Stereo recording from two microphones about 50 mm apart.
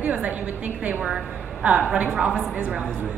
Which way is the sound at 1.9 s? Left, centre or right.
Right.